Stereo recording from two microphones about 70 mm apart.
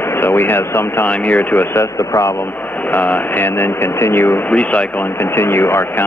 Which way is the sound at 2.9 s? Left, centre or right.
Left.